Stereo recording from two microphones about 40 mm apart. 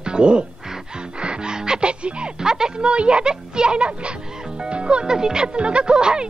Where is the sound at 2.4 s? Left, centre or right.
Centre.